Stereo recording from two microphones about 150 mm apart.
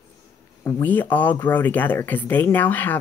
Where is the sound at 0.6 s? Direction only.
10° left (ahead or behind).